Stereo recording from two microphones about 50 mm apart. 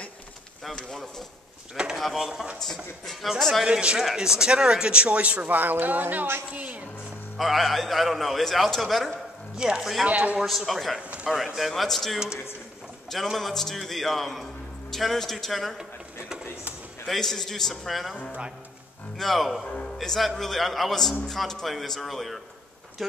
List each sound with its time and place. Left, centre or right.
2.1 s speech: centre
2.6 s a man's voice: centre
3.6 s a woman's voice: centre
7.3 s a man's voice: centre
9.6 s speech: centre
10.0 s speech: right
10.4 s a man's voice: centre
17.1 s a man's voice: centre
19.1 s a man's voice: centre
19.6 s speech: centre
20.0 s a man's voice: centre